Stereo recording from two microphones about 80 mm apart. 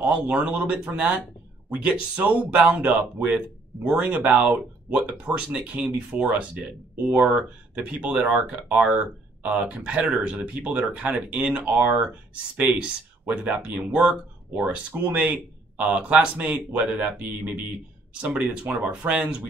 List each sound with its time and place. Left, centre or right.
0.0 s speech: centre